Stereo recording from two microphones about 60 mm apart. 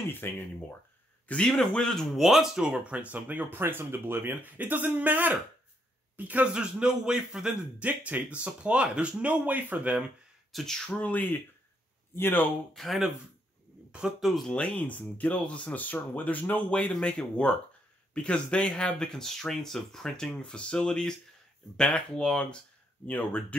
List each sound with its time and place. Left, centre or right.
0.2 s speech: left
1.2 s a man's voice: left
1.5 s speech: centre
2.1 s speech: centre
2.7 s a man's voice: right
7.8 s speech: right
10.5 s speech: centre
10.9 s speech: left
12.2 s speech: left
12.7 s speech: centre
14.2 s speech: centre
14.8 s speech: left
23.0 s speech: left